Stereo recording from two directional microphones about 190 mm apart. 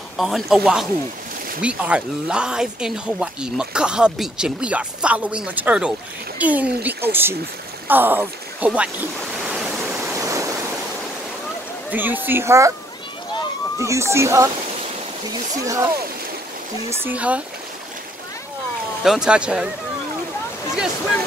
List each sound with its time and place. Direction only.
0.2 s speech: centre (ahead or behind)
7.9 s waves: 10° right (ahead or behind)
11.9 s speech: 10° right (ahead or behind)
13.7 s speech: 15° right (ahead or behind)
15.5 s speech: 15° right (ahead or behind)
16.9 s speech: 10° right (ahead or behind)
19.0 s speech: 5° right (ahead or behind)